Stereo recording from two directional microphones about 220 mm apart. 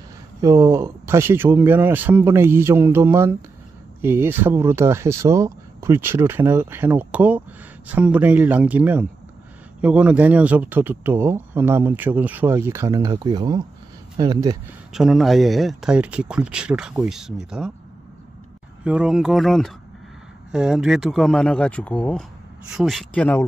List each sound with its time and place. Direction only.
0.4 s speech: 15° right (ahead or behind)
14.9 s speech: centre (ahead or behind)
18.9 s speech: 5° right (ahead or behind)